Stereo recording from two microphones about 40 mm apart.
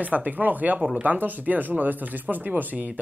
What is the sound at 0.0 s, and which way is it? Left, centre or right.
Speech, right.